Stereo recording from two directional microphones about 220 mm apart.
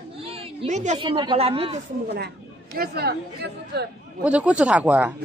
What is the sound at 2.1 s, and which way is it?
Speech, 45° right (ahead or behind).